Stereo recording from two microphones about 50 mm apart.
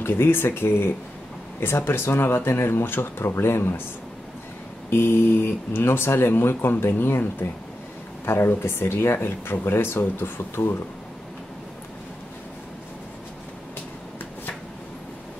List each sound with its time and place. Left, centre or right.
0.0 s speech: left
4.8 s speech: left